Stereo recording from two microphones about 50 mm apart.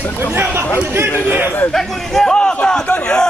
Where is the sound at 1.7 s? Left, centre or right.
Centre.